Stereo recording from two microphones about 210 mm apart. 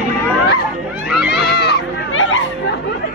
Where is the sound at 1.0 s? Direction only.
5° right (ahead or behind).